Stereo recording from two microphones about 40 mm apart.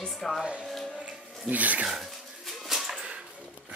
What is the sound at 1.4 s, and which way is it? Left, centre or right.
Speech, right.